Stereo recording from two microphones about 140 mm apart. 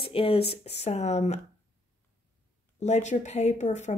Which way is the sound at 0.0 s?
40° left (ahead or behind).